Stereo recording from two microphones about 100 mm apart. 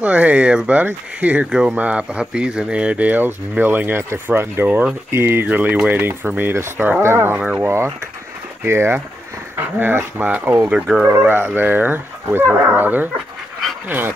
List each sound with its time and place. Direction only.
0.0 s speech: 15° right (ahead or behind)
11.1 s speech: 20° right (ahead or behind)